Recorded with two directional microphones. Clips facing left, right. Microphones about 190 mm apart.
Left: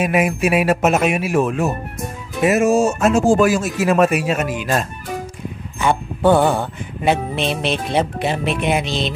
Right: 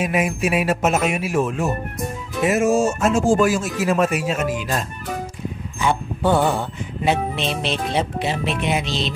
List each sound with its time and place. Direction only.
0.0 s music: 65° left (ahead or behind)
2.4 s speech: 70° left (ahead or behind)
5.8 s music: 55° left (ahead or behind)